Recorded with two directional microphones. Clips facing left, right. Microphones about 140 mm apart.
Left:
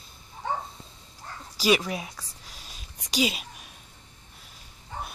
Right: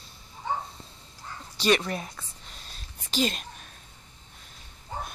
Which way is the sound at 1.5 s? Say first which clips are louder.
Even; 5° left (ahead or behind).